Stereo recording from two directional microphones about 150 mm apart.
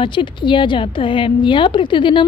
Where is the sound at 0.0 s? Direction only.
35° left (ahead or behind).